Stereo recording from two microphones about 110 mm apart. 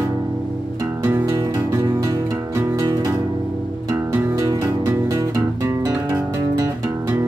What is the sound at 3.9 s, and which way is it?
Music, 20° right (ahead or behind).